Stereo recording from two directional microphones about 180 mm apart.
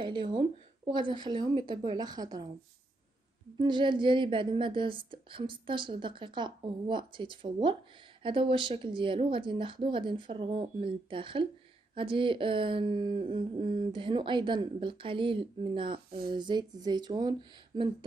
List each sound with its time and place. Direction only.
0.0 s speech: 25° right (ahead or behind)
3.5 s speech: 25° right (ahead or behind)